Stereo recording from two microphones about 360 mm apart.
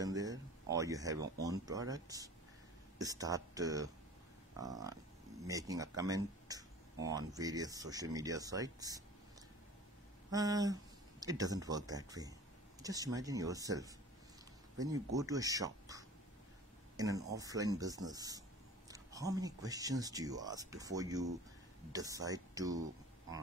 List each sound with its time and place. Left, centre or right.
0.0 s speech: centre
10.3 s speech: centre